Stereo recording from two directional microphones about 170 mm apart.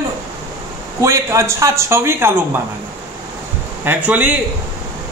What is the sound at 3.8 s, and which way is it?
Speech, 10° right (ahead or behind).